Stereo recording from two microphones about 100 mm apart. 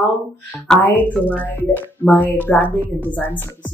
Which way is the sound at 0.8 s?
25° left (ahead or behind).